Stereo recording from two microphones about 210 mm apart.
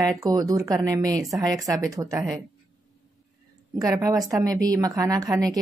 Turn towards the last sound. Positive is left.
turn(degrees=-15)  # may be behind; listen again after turning